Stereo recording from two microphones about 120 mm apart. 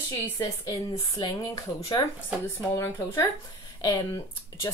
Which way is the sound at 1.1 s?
30° left (ahead or behind).